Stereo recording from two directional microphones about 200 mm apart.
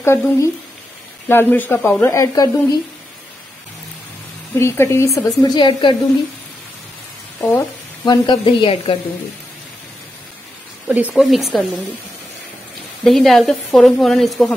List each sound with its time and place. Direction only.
0.0 s speech: 15° left (ahead or behind)
4.6 s speech: 15° left (ahead or behind)
7.3 s a woman's voice: 15° left (ahead or behind)
10.9 s speech: 5° right (ahead or behind)
13.0 s speech: centre (ahead or behind)